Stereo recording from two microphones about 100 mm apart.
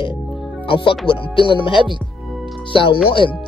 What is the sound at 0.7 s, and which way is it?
Speech, 60° left (ahead or behind).